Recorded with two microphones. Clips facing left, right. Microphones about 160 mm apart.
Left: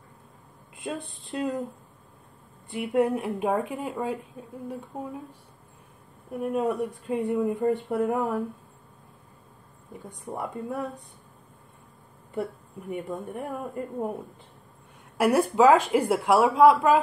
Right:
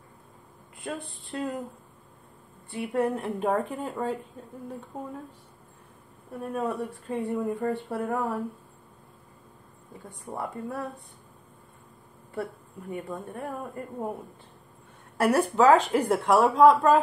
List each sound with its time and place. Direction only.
0.7 s speech: 20° left (ahead or behind)
2.7 s a woman's voice: 15° left (ahead or behind)
6.3 s a woman's voice: 15° left (ahead or behind)
10.0 s a woman's voice: 15° left (ahead or behind)
12.9 s a woman's voice: 15° left (ahead or behind)
15.1 s a woman's voice: 10° left (ahead or behind)